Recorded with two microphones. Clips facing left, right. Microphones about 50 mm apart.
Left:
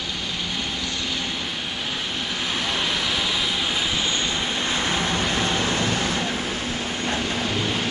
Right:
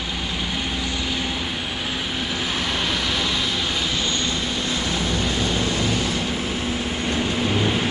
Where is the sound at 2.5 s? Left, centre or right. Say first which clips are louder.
Even; centre; by 6.2 s left.